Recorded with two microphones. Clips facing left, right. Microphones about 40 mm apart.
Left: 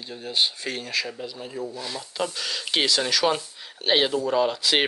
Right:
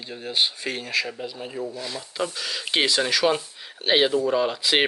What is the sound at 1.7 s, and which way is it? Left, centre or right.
Speech, centre.